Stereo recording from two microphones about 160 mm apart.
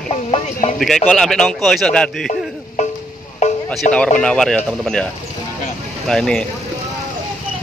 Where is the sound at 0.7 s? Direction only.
Centre (ahead or behind).